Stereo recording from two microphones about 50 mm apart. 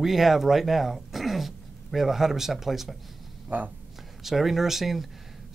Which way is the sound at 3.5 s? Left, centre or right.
Right.